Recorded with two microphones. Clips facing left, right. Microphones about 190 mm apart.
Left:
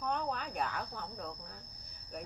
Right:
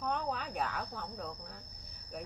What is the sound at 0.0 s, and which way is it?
Speech, 5° right (ahead or behind).